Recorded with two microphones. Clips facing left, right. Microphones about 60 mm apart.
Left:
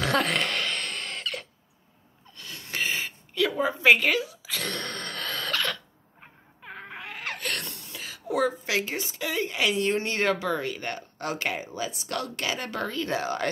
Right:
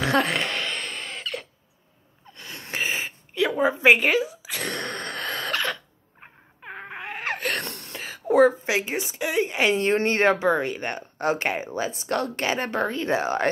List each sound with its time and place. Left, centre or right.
0.0 s a sound: centre
2.3 s gasp: right
2.8 s a sound: right
6.2 s wail: right
7.6 s throat clearing: right
8.0 s a woman's voice: right
9.7 s speech: right